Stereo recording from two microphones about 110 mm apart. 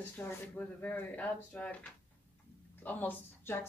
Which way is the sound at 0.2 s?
20° left (ahead or behind).